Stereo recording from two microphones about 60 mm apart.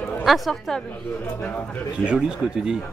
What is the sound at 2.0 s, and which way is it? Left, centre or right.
Speech, centre.